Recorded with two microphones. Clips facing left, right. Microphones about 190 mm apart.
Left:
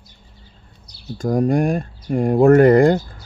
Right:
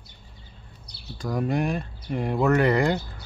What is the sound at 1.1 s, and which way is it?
Speech, 45° left (ahead or behind).